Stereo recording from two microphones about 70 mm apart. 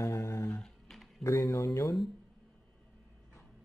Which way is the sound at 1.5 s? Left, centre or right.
Left.